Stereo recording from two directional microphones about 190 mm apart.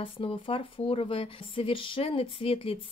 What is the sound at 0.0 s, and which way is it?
Speech, 30° left (ahead or behind).